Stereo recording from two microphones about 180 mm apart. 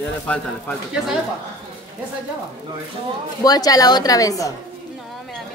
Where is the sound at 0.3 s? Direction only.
5° left (ahead or behind).